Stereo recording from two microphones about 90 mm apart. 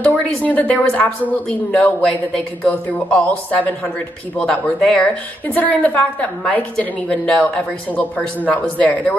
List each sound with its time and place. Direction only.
0.4 s a woman's voice: 15° left (ahead or behind)